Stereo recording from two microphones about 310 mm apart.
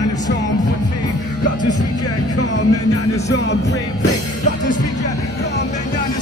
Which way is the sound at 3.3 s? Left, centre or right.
Left.